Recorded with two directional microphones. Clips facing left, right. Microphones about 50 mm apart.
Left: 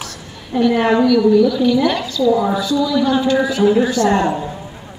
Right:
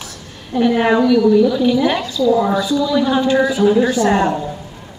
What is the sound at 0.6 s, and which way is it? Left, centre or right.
A man's voice, centre.